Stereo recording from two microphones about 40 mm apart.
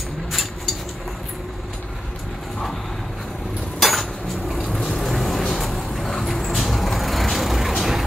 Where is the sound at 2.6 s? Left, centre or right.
Centre.